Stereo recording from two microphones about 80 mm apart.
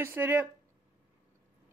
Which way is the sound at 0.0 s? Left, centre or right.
Right.